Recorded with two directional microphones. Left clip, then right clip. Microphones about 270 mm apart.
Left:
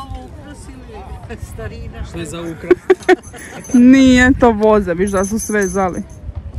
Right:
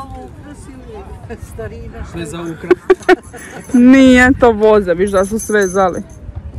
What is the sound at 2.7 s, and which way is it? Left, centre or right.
Speech, centre.